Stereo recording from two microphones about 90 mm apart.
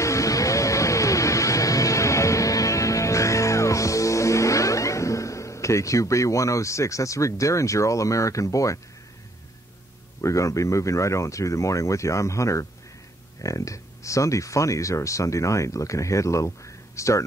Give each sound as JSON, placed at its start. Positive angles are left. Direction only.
{"t": 0.0, "sound": "music", "side_deg": 35}
{"t": 10.2, "sound": "speech", "side_deg": 35}